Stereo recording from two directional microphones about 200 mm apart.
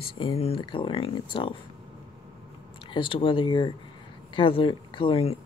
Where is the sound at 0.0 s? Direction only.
25° left (ahead or behind).